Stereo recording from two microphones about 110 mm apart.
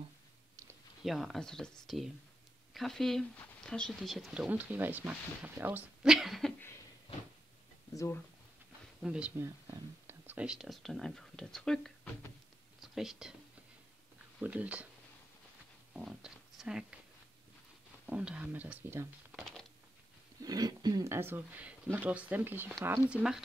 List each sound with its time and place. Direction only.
1.0 s speech: centre (ahead or behind)
4.3 s speech: 10° right (ahead or behind)
6.0 s a sound: centre (ahead or behind)
7.9 s speech: 30° left (ahead or behind)
9.0 s speech: 10° right (ahead or behind)
9.4 s speech: 25° right (ahead or behind); by 13.3 s 5° right (ahead or behind)
14.4 s speech: 15° right (ahead or behind)
15.9 s speech: 5° right (ahead or behind)
18.0 s speech: 10° right (ahead or behind)
19.3 s a sound: 5° left (ahead or behind)
20.4 s speech: 35° right (ahead or behind)
21.1 s speech: 20° right (ahead or behind)